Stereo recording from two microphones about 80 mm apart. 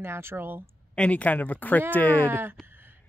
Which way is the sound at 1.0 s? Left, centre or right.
Centre.